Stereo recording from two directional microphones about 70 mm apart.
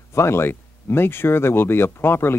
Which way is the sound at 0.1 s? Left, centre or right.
Left.